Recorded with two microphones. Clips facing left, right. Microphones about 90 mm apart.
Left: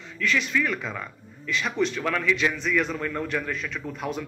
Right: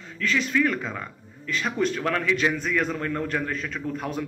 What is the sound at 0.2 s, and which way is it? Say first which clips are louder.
A man's voice: right 2 dB; 35° right (ahead or behind).